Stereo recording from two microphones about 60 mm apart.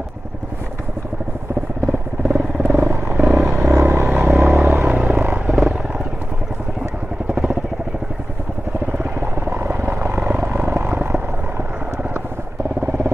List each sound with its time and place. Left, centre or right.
1.9 s vehicle: centre
3.7 s vehicle: right
4.2 s vehicle: right
4.7 s a sound: right
5.6 s wild animals: centre
7.2 s vehicle: centre
8.9 s helicopter: right
10.9 s vehicle: right